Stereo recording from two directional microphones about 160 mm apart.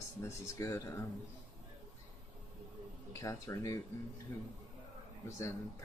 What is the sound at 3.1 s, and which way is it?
Speech, 15° left (ahead or behind).